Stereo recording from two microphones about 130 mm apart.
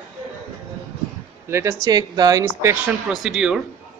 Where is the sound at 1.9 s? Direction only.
30° right (ahead or behind).